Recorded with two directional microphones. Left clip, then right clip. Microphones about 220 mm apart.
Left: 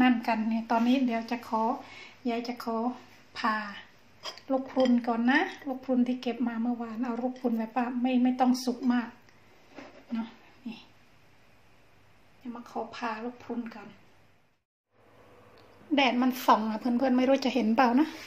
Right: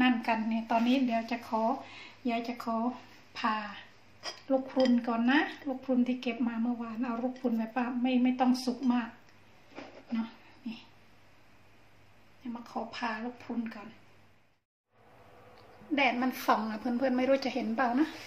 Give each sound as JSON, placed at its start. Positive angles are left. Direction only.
{"t": 0.0, "sound": "speech", "side_deg": 15}
{"t": 10.6, "sound": "speech", "side_deg": 10}
{"t": 12.6, "sound": "speech", "side_deg": 10}
{"t": 15.9, "sound": "speech", "side_deg": 20}
{"t": 17.7, "sound": "a woman's voice", "side_deg": 35}